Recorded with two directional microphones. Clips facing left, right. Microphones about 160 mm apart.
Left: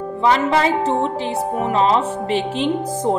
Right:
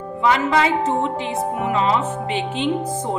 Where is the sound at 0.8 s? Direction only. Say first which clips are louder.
Left 2 dB; 35° left (ahead or behind).